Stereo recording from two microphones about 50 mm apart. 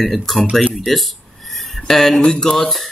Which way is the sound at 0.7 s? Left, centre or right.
Centre.